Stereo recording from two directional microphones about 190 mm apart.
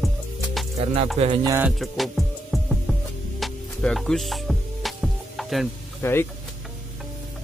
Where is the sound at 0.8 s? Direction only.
30° right (ahead or behind).